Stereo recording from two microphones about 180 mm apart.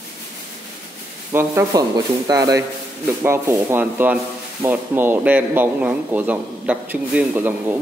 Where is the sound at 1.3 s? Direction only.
15° right (ahead or behind).